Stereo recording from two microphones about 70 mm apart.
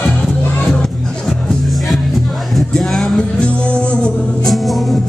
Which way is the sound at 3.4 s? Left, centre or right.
Centre.